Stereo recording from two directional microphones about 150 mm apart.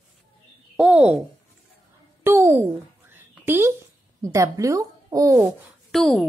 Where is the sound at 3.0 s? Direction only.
15° right (ahead or behind).